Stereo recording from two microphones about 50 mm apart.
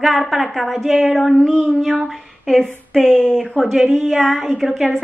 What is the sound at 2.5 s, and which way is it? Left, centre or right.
A woman's voice, centre.